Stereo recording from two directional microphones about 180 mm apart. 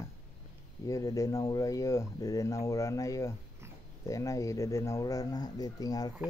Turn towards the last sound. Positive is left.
turn(degrees=20)  # may be behind; listen again after turning